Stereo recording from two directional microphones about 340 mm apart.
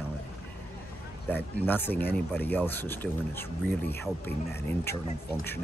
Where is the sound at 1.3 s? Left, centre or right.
Centre.